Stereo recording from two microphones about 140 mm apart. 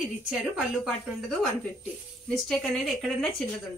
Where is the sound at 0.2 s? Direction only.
5° right (ahead or behind).